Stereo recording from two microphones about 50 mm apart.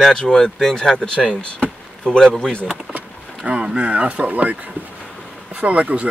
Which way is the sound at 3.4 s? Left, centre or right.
Centre.